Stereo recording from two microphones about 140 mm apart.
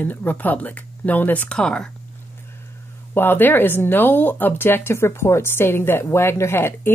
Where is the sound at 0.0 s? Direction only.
15° left (ahead or behind).